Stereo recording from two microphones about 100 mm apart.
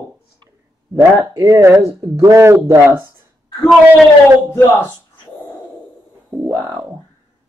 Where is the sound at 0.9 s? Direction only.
35° right (ahead or behind).